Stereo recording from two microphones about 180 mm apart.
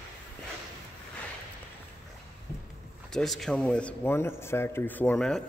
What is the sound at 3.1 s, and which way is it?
Speech, centre (ahead or behind).